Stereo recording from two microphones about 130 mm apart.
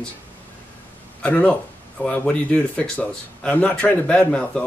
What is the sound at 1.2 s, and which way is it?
Speech, 10° left (ahead or behind).